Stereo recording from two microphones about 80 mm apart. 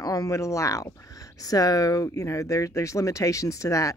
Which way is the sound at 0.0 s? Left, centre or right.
Left.